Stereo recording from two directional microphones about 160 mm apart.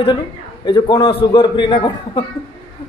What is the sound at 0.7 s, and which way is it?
A man's voice, 25° left (ahead or behind).